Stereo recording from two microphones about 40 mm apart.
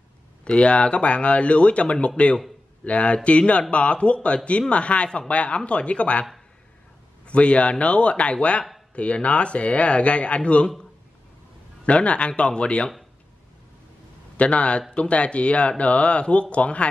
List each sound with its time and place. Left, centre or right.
0.5 s speech: left
7.2 s a man's voice: left
11.8 s speech: left
14.3 s a man's voice: left